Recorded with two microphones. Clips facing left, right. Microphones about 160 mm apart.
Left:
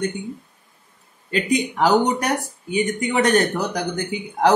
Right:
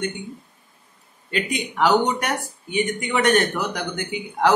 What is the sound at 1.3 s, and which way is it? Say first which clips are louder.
Speech: left 5 dB; 35° left (ahead or behind).